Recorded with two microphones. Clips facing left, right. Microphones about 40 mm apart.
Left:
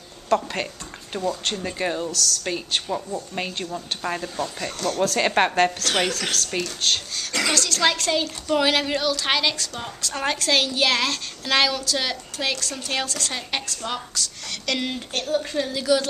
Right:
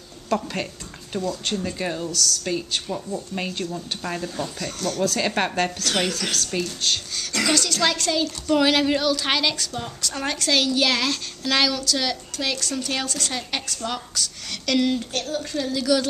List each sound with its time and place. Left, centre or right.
0.3 s a woman's voice: centre
1.1 s a woman's voice: left; by 5.1 s centre
5.1 s a woman's voice: centre
7.8 s a woman's voice: centre
14.8 s a woman's voice: centre